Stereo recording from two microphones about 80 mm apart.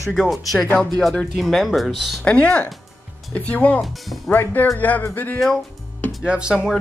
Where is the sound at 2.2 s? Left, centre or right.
Centre.